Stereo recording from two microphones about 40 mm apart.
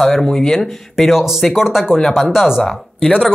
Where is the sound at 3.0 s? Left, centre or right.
Centre.